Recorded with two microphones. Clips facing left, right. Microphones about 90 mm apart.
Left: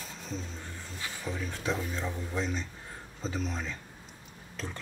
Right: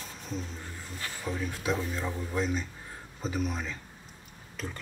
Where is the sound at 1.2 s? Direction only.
10° right (ahead or behind).